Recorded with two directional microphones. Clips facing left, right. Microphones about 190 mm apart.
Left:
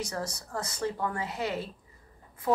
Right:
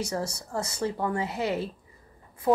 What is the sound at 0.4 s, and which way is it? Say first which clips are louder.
A woman's voice: right 3 dB; 25° right (ahead or behind).